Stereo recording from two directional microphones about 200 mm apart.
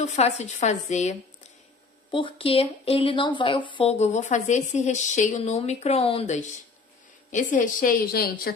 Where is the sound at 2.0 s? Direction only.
25° left (ahead or behind).